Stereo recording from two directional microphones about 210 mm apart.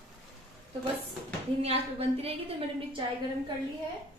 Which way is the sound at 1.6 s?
30° right (ahead or behind).